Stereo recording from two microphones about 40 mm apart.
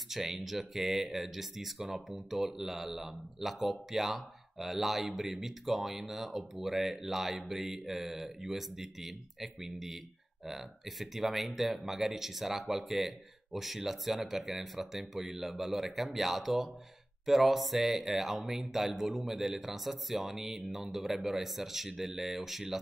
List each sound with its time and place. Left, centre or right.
0.1 s speech: centre